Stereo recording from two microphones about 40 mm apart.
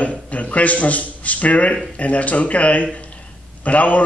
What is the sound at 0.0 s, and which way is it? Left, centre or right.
A man's voice, left.